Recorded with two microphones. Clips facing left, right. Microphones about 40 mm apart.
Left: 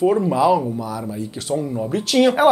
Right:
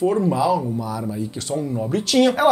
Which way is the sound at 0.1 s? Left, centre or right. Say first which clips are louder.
Left 2 dB; centre.